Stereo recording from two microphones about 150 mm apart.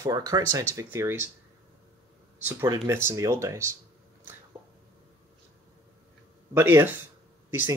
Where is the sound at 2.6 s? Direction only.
20° right (ahead or behind).